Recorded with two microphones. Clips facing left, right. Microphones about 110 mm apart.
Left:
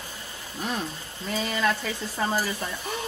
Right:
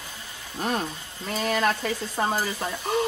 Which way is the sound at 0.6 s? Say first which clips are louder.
Right 3 dB; 45° right (ahead or behind).